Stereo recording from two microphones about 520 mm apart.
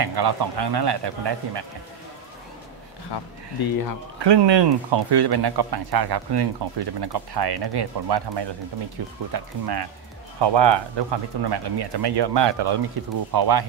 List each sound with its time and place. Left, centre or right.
0.0 s speech: right
3.6 s speech: left
4.2 s speech: right